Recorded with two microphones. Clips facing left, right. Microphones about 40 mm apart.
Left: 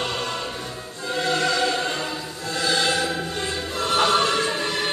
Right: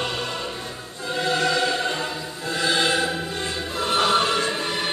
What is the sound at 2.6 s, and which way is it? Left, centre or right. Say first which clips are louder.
Music: right 1 dB; centre.